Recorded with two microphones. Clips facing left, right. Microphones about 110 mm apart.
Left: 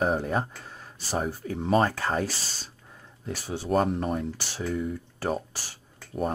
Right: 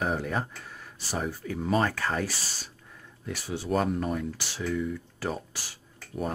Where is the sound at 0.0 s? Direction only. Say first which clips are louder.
Left 3 dB; 30° left (ahead or behind).